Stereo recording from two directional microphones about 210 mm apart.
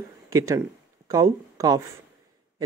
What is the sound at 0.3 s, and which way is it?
Speech, 15° right (ahead or behind).